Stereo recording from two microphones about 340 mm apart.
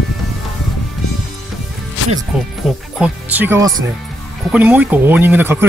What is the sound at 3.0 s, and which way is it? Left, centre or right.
Speech, centre.